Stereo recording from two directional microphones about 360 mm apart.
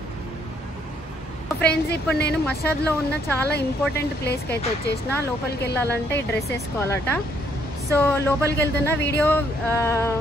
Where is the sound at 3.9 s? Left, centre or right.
Left.